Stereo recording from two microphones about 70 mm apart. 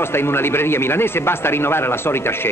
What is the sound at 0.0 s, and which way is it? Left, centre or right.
Speech, left.